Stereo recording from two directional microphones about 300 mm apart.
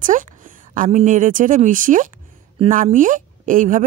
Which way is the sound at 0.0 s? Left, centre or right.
Right.